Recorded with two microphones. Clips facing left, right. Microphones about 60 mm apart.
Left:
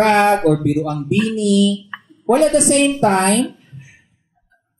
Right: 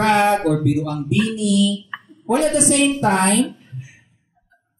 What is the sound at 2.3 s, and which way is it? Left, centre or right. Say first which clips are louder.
Speech: left 4 dB; left.